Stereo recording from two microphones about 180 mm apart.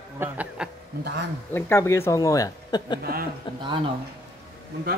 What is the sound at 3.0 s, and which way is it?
Speech, 55° right (ahead or behind).